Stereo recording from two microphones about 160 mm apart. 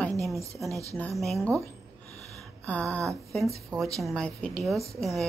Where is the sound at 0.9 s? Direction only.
5° left (ahead or behind).